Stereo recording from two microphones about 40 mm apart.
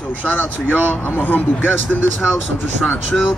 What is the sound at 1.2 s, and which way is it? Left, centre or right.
Speech, left.